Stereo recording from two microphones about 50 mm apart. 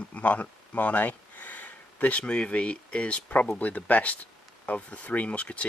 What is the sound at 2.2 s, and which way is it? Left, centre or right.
Speech, centre.